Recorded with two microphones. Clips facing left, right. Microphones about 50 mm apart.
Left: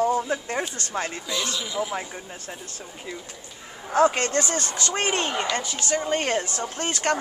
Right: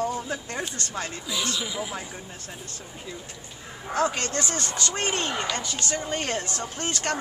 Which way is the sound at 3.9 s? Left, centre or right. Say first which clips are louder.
Left 6 dB; left.